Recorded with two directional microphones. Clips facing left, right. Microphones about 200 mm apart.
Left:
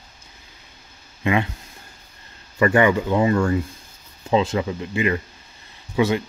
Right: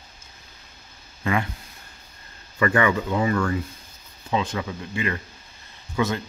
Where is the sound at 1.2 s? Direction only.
20° left (ahead or behind).